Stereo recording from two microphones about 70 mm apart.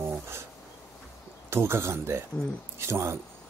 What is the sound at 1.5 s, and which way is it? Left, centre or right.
A man's voice, right.